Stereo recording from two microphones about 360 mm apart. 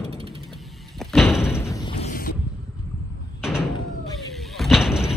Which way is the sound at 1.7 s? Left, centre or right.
Centre.